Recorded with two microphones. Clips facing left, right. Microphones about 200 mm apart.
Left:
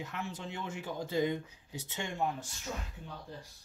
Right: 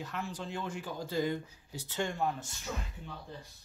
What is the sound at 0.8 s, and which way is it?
Speech, 20° left (ahead or behind).